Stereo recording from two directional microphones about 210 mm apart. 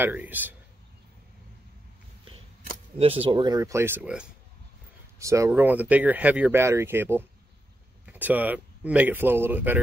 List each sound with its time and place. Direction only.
0.0 s speech: 10° right (ahead or behind)
3.0 s speech: 25° right (ahead or behind); by 9.8 s 10° right (ahead or behind)